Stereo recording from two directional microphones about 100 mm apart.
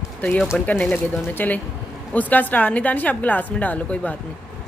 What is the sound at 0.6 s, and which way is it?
A woman's voice, 15° left (ahead or behind).